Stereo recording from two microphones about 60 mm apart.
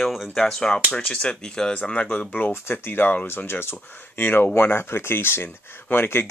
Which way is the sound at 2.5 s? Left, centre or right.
Left.